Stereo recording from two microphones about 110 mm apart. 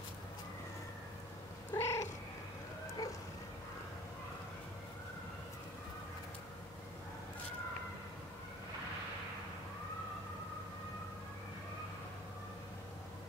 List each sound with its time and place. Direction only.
1.7 s cat: 25° left (ahead or behind)
3.0 s dog: 35° left (ahead or behind)